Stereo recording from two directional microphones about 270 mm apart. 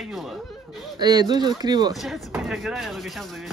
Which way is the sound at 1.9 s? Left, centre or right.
Centre.